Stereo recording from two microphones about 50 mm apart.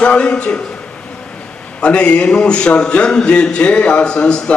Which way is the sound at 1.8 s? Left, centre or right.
Left.